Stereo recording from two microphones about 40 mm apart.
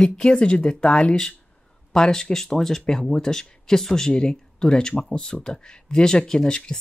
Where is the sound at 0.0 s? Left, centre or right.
Centre.